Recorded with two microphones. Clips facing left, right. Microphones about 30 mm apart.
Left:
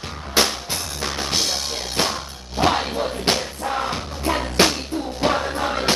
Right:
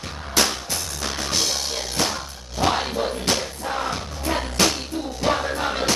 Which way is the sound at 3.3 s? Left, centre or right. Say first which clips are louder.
Left 3 dB; left.